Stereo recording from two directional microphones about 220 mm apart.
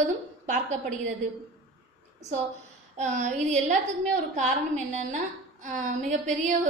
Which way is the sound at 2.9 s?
30° right (ahead or behind).